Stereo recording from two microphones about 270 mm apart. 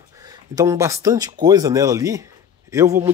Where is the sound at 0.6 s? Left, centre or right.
Centre.